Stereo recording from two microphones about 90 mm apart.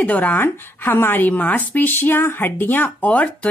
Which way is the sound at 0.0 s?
20° left (ahead or behind).